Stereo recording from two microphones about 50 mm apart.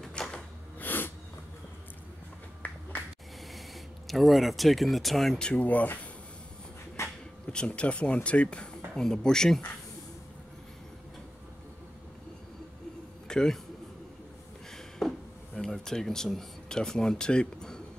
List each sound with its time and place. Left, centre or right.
0.2 s a sound: centre
0.7 s snort: left
2.6 s finger snapping: left
3.5 s speech: centre
5.4 s speech: left
7.0 s a sound: left
7.5 s speech: centre
13.3 s a man's voice: centre
14.7 s a sound: centre
15.5 s speech: centre